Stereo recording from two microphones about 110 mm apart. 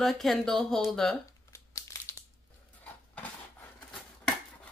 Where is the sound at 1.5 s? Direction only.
25° left (ahead or behind).